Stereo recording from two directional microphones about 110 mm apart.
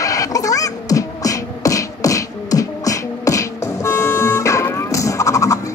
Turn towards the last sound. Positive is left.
turn(degrees=30)  # may be behind; listen again after turning